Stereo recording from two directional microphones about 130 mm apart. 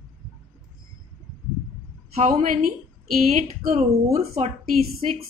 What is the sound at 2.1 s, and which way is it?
Speech, 65° right (ahead or behind).